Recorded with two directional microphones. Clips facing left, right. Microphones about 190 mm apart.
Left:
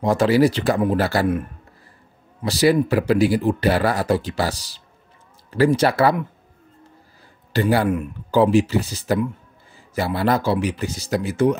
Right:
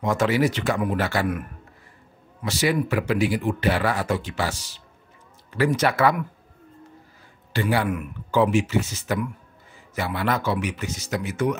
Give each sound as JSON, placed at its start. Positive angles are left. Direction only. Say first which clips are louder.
{"t": 0.0, "sound": "speech", "louder": "left 5 dB", "side_deg": 35}
{"t": 2.4, "sound": "speech", "louder": "left 6 dB", "side_deg": 35}
{"t": 7.5, "sound": "speech", "louder": "left 5 dB", "side_deg": 40}